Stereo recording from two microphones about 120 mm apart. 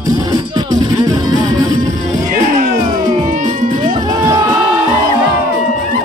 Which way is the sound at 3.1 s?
90° right.